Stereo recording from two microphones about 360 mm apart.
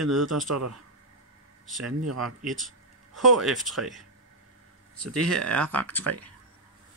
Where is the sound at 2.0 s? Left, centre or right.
Right.